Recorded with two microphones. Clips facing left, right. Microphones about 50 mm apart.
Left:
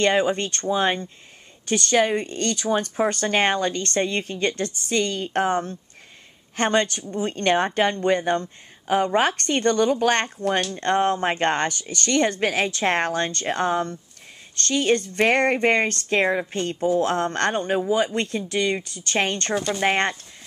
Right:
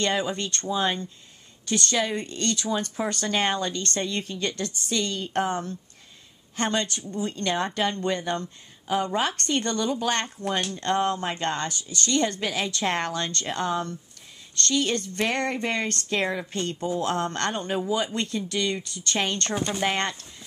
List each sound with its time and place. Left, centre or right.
0.0 s speech: left
17.0 s speech: left